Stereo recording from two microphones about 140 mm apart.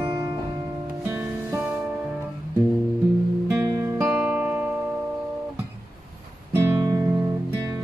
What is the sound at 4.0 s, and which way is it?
Music, 10° right (ahead or behind).